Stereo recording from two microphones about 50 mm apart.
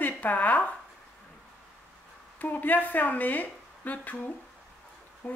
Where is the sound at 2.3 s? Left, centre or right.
Left.